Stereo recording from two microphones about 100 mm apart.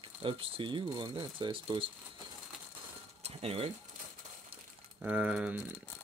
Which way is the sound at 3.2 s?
75° right (ahead or behind).